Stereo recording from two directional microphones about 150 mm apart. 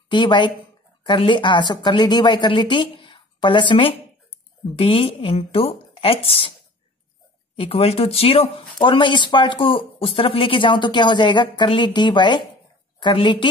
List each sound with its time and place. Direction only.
0.1 s speech: 30° left (ahead or behind)
7.5 s speech: 40° left (ahead or behind)